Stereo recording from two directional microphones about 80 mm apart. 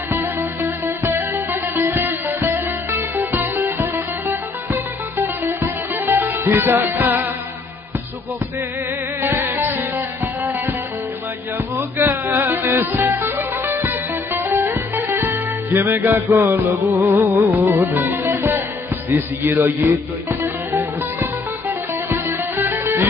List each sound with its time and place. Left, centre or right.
0.1 s music: right
9.2 s music: right
11.5 s music: right